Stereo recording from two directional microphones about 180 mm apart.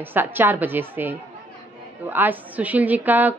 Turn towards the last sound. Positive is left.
turn(degrees=-10)  # may be behind; listen again after turning